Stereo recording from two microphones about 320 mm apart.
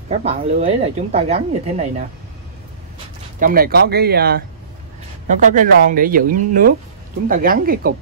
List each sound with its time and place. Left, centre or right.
0.2 s speech: centre
3.3 s speech: right